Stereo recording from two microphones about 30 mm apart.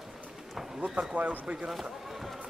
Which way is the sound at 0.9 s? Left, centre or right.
Right.